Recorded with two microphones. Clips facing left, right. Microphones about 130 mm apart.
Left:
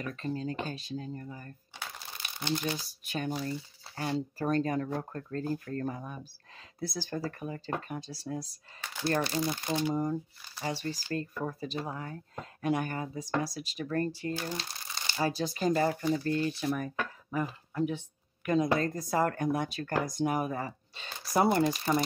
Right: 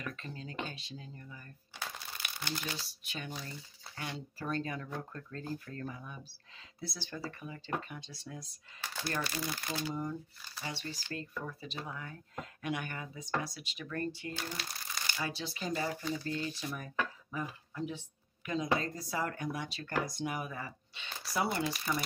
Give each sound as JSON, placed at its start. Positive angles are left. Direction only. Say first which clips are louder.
{"t": 0.0, "sound": "speech", "louder": "left 9 dB", "side_deg": 40}
{"t": 2.2, "sound": "crumpling", "louder": "left 8 dB", "side_deg": 25}
{"t": 2.6, "sound": "speech", "louder": "left 7 dB", "side_deg": 45}
{"t": 10.6, "sound": "speech", "louder": "left 8 dB", "side_deg": 40}
{"t": 14.6, "sound": "crumpling", "louder": "left 1 dB", "side_deg": 25}
{"t": 15.2, "sound": "speech", "louder": "left 11 dB", "side_deg": 40}